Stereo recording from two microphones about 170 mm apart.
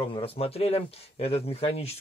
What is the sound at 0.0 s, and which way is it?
Speech, 35° left (ahead or behind).